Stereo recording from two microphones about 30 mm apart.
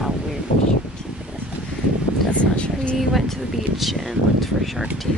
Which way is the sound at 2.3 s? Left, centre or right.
Left.